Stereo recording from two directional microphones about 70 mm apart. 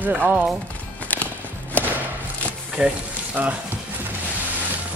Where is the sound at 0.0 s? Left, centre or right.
Right.